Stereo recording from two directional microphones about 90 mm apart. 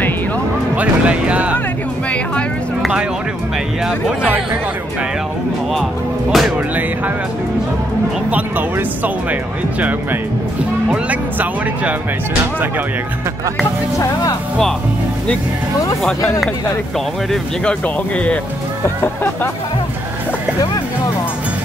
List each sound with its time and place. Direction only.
0.7 s speech: 15° right (ahead or behind)
2.8 s speech: 10° right (ahead or behind)
6.3 s speech: centre (ahead or behind)
8.3 s speech: 20° right (ahead or behind)
17.6 s speech: 15° left (ahead or behind)